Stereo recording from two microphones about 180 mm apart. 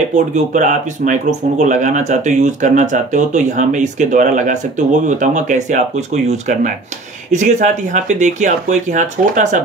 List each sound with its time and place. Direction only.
0.1 s speech: 40° right (ahead or behind)